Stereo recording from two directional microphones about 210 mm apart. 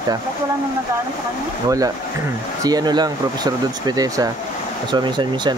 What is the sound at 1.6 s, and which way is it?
Speech, 15° right (ahead or behind).